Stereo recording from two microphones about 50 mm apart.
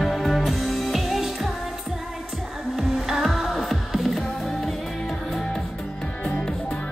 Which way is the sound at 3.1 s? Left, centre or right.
Centre.